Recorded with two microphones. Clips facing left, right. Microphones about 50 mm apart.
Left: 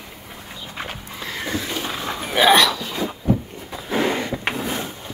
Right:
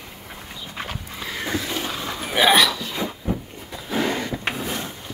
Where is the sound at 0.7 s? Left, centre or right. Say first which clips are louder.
Even; centre.